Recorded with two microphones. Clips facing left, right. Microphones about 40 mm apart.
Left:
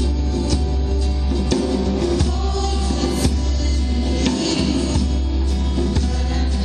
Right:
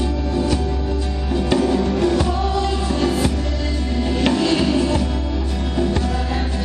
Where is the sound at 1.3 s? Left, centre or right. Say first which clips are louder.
Right 3 dB; right.